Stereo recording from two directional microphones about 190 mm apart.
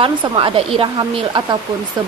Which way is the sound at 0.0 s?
25° right (ahead or behind).